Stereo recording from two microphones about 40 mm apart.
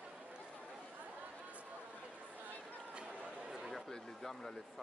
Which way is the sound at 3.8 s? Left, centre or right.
Centre.